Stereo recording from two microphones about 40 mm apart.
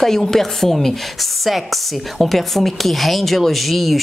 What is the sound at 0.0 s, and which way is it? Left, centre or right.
Speech, centre.